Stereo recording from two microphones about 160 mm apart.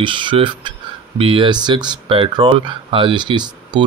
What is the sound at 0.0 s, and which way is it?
Speech, 30° right (ahead or behind).